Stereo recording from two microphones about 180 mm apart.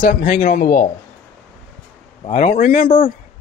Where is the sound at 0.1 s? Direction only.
45° left (ahead or behind).